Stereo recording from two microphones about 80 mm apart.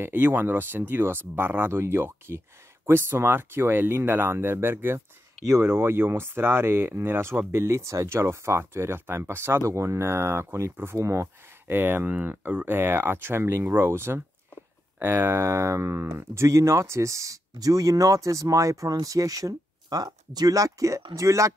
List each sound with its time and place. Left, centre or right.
0.0 s speech: right
11.7 s speech: right